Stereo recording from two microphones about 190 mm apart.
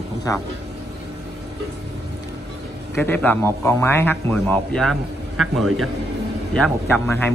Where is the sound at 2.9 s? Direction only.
10° left (ahead or behind).